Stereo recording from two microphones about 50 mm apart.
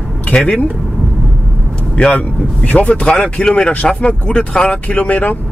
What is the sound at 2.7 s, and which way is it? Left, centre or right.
Speech, left.